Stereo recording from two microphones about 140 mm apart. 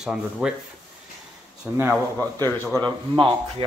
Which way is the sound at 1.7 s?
5° right (ahead or behind).